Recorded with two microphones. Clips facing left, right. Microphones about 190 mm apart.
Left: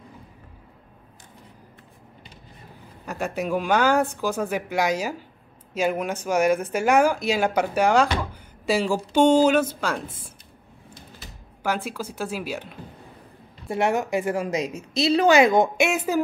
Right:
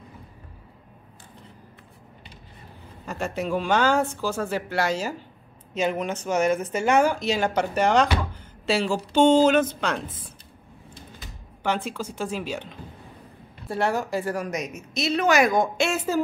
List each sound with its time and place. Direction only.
3.1 s speech: 10° left (ahead or behind)
11.6 s speech: 5° left (ahead or behind)
13.7 s a woman's voice: 20° left (ahead or behind)